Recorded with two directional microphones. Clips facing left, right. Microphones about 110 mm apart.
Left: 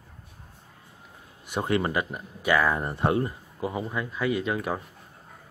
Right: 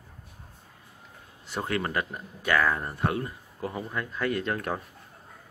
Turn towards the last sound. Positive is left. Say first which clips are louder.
# left 2 dB
turn(degrees=5)  # may be behind; listen again after turning